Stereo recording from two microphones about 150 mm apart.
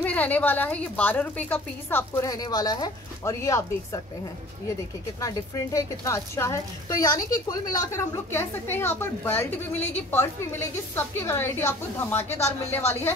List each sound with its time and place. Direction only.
0.0 s a woman's voice: 10° left (ahead or behind)
2.2 s speech: 25° left (ahead or behind)
5.2 s a woman's voice: 20° left (ahead or behind)
12.3 s speech: 45° left (ahead or behind)